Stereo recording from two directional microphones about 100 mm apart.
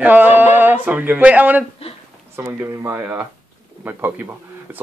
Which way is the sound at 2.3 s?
25° right (ahead or behind).